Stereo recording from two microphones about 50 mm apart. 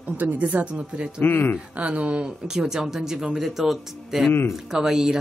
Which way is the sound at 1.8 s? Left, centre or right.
Right.